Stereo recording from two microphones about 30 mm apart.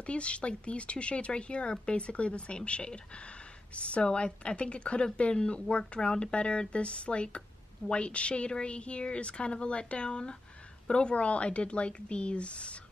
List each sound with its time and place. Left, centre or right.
0.0 s speech: left